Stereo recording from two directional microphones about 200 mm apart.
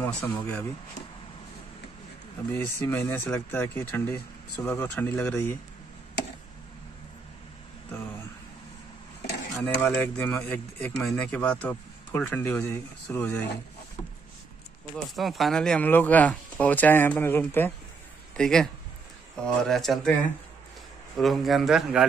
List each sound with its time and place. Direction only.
0.0 s speech: 10° left (ahead or behind)
2.5 s speech: 10° left (ahead or behind)
9.2 s dishes: 60° left (ahead or behind)
9.6 s speech: 10° left (ahead or behind)
15.0 s a man's voice: centre (ahead or behind)
21.2 s speech: centre (ahead or behind)